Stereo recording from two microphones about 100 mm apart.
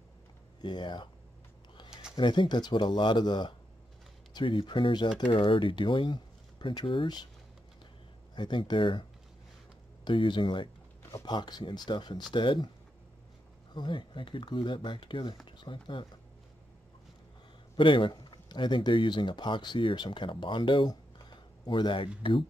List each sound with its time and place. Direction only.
0.6 s speech: 50° left (ahead or behind)
2.1 s speech: 50° left (ahead or behind)
8.4 s speech: 50° left (ahead or behind)
10.0 s speech: 55° left (ahead or behind)
11.0 s a sound: 30° left (ahead or behind)
11.2 s speech: 45° left (ahead or behind)
13.7 s speech: 50° left (ahead or behind)
17.7 s speech: 55° left (ahead or behind)
20.9 s a sound: 45° left (ahead or behind)